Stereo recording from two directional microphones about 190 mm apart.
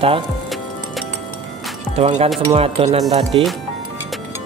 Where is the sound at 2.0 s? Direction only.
35° right (ahead or behind).